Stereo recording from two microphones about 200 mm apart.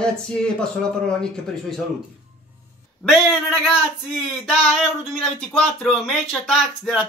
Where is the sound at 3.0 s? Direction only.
Centre (ahead or behind).